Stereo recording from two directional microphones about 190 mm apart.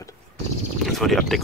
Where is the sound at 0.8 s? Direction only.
Centre (ahead or behind).